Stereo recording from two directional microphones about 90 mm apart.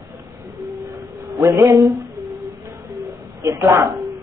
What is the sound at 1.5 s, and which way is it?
Speech, 35° right (ahead or behind).